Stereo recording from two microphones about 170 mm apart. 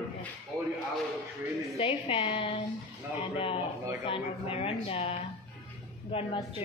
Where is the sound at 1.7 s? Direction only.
35° left (ahead or behind).